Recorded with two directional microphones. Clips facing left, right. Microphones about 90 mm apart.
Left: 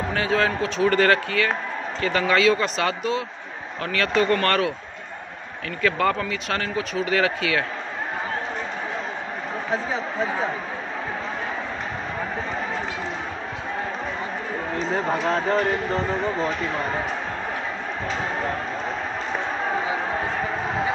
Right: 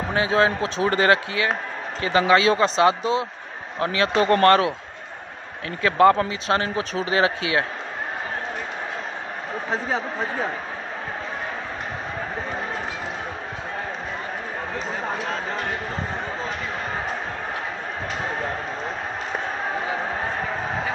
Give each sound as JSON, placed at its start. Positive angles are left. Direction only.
{"t": 0.1, "sound": "speech", "side_deg": -20}
{"t": 5.8, "sound": "speech", "side_deg": -20}